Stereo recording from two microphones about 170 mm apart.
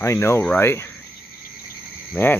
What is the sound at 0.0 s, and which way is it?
Speech, 15° left (ahead or behind).